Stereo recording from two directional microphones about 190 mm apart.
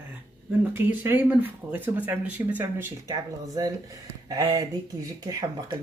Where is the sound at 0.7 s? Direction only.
10° right (ahead or behind).